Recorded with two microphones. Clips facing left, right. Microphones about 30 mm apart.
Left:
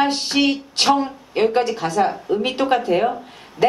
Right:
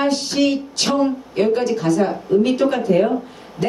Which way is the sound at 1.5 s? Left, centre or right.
Left.